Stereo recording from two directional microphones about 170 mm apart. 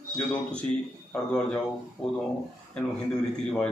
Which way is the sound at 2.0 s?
5° left (ahead or behind).